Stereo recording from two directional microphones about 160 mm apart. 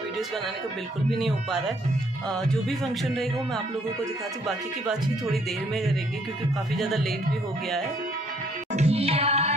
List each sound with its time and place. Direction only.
1.1 s speech: centre (ahead or behind)
6.8 s speech: centre (ahead or behind)
8.7 s music: 40° right (ahead or behind)